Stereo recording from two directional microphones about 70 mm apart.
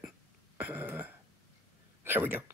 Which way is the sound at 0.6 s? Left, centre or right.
Right.